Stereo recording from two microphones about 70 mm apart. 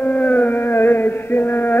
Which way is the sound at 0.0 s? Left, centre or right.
Left.